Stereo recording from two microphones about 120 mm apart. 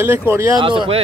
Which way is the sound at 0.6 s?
45° right (ahead or behind).